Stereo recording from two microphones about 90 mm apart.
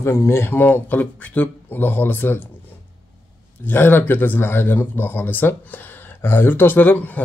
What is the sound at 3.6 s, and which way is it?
Speech, 20° left (ahead or behind).